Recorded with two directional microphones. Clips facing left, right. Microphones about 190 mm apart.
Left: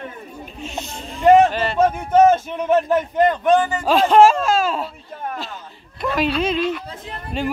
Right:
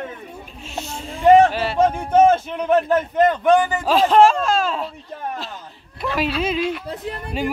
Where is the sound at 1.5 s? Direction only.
5° right (ahead or behind).